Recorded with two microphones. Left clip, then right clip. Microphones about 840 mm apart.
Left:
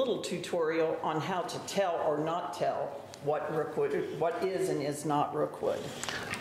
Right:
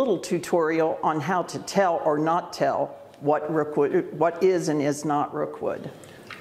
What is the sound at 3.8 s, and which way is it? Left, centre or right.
Speech, right.